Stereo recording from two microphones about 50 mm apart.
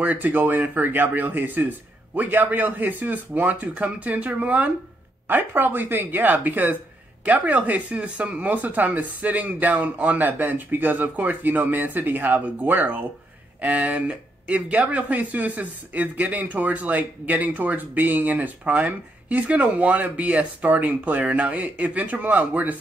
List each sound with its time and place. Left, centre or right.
0.0 s speech: right